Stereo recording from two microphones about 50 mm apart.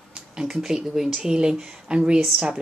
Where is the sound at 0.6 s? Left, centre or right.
Centre.